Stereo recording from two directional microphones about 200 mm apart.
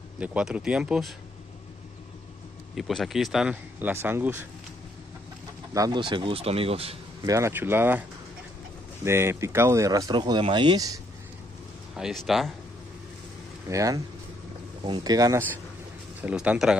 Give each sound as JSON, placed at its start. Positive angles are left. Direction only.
{"t": 0.2, "sound": "speech", "side_deg": -5}
{"t": 2.7, "sound": "speech", "side_deg": 0}
{"t": 5.8, "sound": "speech", "side_deg": -20}
{"t": 7.2, "sound": "speech", "side_deg": -15}
{"t": 9.0, "sound": "speech", "side_deg": -10}
{"t": 12.0, "sound": "speech", "side_deg": -5}
{"t": 13.7, "sound": "speech", "side_deg": -15}